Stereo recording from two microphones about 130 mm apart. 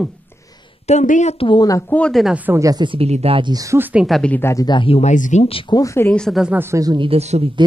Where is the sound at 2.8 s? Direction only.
50° right (ahead or behind).